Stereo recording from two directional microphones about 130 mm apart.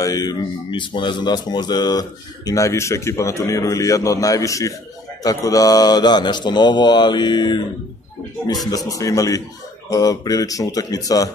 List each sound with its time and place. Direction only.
0.0 s speech: 30° left (ahead or behind)
8.7 s speech: 25° left (ahead or behind)